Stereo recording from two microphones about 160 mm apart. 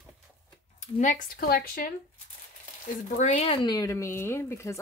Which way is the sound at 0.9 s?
55° left (ahead or behind).